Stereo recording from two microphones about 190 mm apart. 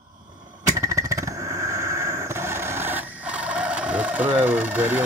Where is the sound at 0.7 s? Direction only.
15° right (ahead or behind).